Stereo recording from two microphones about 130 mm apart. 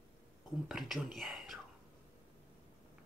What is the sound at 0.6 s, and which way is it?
Speech, centre (ahead or behind).